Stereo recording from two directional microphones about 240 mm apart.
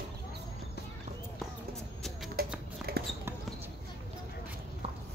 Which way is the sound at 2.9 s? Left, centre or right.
Right.